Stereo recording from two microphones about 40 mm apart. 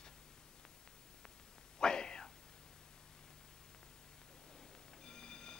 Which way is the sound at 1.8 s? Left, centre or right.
Centre.